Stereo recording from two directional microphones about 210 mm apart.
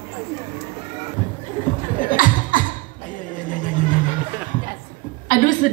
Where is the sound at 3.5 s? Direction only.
40° left (ahead or behind).